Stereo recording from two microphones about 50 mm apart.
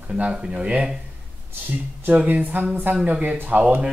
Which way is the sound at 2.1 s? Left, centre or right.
Right.